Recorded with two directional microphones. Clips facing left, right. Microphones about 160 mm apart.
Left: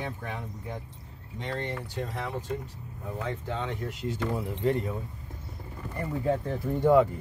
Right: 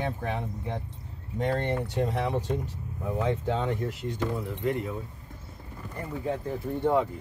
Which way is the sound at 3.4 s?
50° right (ahead or behind).